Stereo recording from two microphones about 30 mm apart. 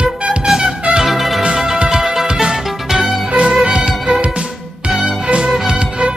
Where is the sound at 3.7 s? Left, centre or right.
Right.